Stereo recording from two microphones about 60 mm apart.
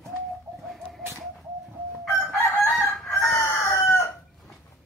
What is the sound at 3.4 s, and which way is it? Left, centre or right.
Chicken, left.